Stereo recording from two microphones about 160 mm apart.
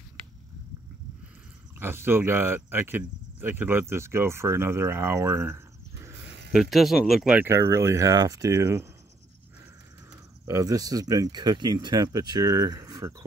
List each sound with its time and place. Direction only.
1.8 s speech: 15° right (ahead or behind)
6.5 s speech: centre (ahead or behind)
7.4 s speech: 15° right (ahead or behind)
10.4 s speech: 20° right (ahead or behind)